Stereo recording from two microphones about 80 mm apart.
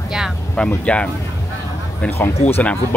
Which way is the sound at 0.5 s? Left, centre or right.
Centre.